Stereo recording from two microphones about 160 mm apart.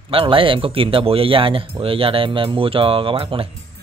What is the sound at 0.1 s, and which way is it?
Speech, 35° right (ahead or behind).